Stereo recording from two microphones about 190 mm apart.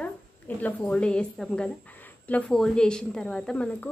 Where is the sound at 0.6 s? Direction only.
10° left (ahead or behind).